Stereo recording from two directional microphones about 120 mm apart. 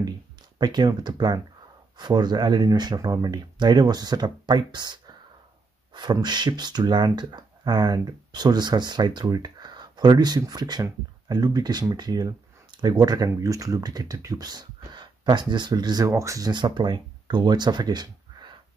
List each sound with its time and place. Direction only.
0.6 s speech: 35° right (ahead or behind)